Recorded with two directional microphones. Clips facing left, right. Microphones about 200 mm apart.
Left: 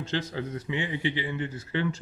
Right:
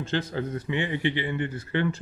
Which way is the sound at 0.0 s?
50° right (ahead or behind).